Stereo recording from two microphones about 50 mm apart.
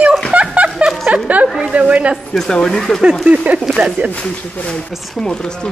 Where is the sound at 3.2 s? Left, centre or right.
Right.